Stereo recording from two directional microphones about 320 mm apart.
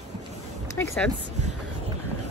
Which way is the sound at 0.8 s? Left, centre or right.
Centre.